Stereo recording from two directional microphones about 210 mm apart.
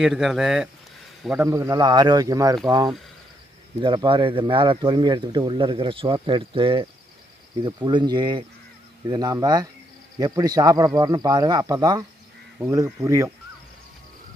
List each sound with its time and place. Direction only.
0.0 s speech: centre (ahead or behind)